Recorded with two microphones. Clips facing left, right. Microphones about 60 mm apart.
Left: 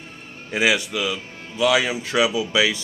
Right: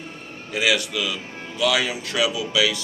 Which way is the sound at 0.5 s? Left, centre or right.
Left.